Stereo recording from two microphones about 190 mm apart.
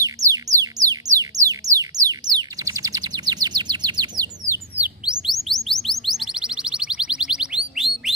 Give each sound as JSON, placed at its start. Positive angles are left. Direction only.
{"t": 0.0, "sound": "music", "side_deg": -15}
{"t": 4.7, "sound": "chirp", "side_deg": -5}